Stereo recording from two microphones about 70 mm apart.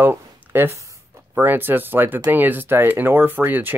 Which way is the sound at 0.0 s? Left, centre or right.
Right.